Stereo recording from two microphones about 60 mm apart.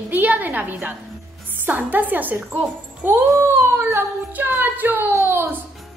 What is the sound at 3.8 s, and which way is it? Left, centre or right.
Child singing, right.